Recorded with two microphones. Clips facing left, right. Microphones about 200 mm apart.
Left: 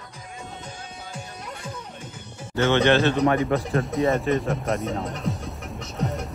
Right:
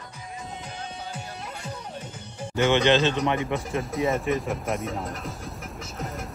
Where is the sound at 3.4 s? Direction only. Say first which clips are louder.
Left 5 dB; centre (ahead or behind).